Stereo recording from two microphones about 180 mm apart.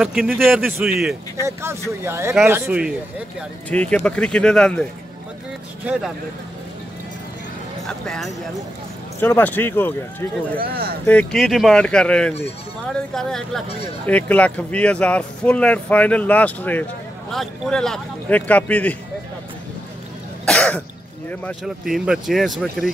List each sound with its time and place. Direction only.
0.0 s a man's voice: centre (ahead or behind)
3.7 s a man's voice: 5° left (ahead or behind)
5.9 s a man's voice: centre (ahead or behind)
7.8 s a man's voice: 5° left (ahead or behind)
10.6 s speech: 60° right (ahead or behind)
11.1 s a man's voice: 5° left (ahead or behind)
20.4 s cough: 5° left (ahead or behind)
21.6 s a man's voice: centre (ahead or behind)